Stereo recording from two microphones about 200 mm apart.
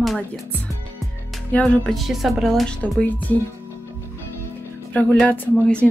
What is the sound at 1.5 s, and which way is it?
Speech, 5° left (ahead or behind).